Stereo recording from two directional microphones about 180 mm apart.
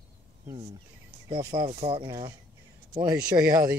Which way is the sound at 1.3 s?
20° right (ahead or behind).